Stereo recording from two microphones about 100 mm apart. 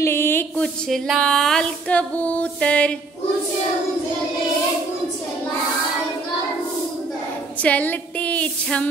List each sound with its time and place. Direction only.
0.0 s a sound: 25° left (ahead or behind)
0.6 s speech: 5° left (ahead or behind)
1.2 s music: 5° left (ahead or behind)
7.6 s music: 15° left (ahead or behind)